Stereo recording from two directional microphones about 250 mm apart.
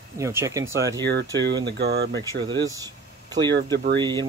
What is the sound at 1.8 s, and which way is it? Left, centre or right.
Speech, right.